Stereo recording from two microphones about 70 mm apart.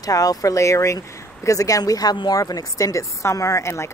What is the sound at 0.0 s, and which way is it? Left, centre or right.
Speech, left.